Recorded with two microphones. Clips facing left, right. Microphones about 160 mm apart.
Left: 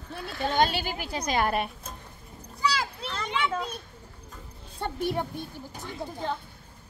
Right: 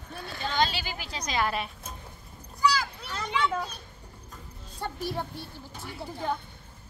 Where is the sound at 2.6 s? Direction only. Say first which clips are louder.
Right 2 dB; 30° left (ahead or behind).